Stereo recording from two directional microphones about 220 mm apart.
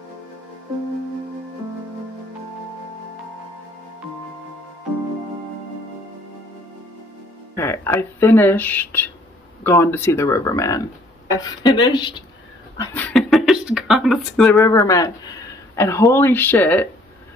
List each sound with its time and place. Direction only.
7.5 s a woman's voice: 10° left (ahead or behind)
12.7 s a sound: 10° left (ahead or behind)
14.5 s speech: 15° left (ahead or behind)